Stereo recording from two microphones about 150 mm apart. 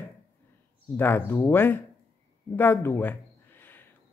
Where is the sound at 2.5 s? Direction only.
15° left (ahead or behind).